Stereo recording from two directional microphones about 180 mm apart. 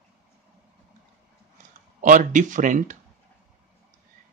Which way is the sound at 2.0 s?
45° right (ahead or behind).